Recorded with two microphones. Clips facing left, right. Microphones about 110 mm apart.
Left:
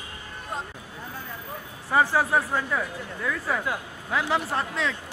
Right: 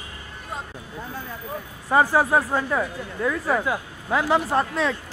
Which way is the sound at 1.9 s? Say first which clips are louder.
Right 3 dB; 45° right (ahead or behind).